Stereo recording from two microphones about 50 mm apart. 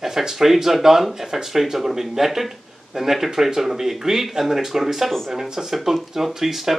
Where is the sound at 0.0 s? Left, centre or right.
Centre.